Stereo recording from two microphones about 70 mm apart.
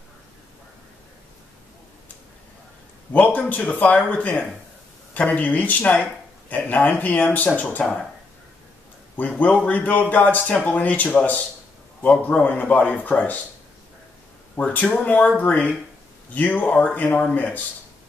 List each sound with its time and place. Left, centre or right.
3.1 s a man's voice: left
9.1 s a man's voice: left
14.6 s a man's voice: left